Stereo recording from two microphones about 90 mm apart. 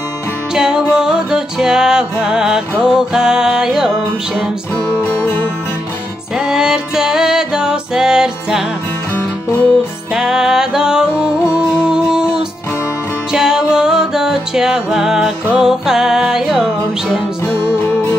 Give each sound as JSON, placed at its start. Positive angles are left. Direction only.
{"t": 0.6, "sound": "music", "side_deg": -10}
{"t": 6.3, "sound": "music", "side_deg": -5}
{"t": 9.1, "sound": "music", "side_deg": 15}
{"t": 10.1, "sound": "music", "side_deg": -5}